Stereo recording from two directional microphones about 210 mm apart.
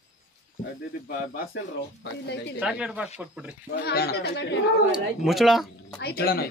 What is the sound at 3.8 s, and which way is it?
Speech, 50° left (ahead or behind).